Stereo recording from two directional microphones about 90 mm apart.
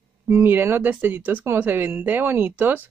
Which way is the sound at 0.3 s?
25° right (ahead or behind).